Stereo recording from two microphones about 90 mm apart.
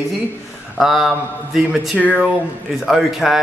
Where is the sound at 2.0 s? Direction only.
15° left (ahead or behind).